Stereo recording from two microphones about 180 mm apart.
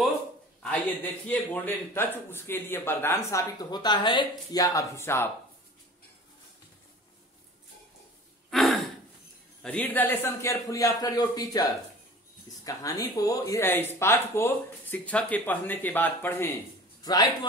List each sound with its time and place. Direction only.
0.6 s a man's voice: 5° left (ahead or behind)
8.5 s throat clearing: centre (ahead or behind)
9.6 s a man's voice: 10° left (ahead or behind)
12.6 s a man's voice: 20° left (ahead or behind)